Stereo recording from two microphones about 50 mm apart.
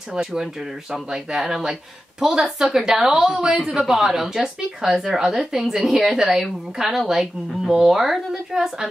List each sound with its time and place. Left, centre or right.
0.1 s a woman's voice: centre